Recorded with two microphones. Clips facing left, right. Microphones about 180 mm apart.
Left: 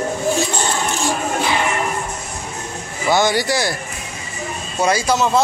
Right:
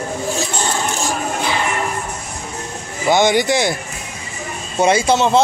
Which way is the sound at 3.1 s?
20° right (ahead or behind).